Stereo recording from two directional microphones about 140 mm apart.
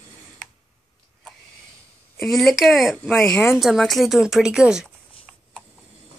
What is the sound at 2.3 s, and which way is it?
Speech, centre (ahead or behind).